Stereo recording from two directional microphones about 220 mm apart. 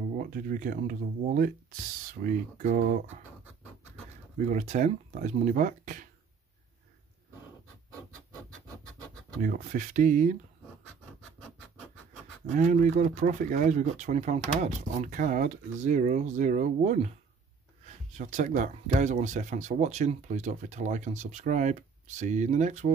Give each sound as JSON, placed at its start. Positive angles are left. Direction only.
{"t": 0.2, "sound": "speech", "side_deg": -40}
{"t": 4.4, "sound": "speech", "side_deg": -35}
{"t": 9.4, "sound": "speech", "side_deg": -40}
{"t": 12.5, "sound": "speech", "side_deg": -35}
{"t": 18.1, "sound": "speech", "side_deg": -35}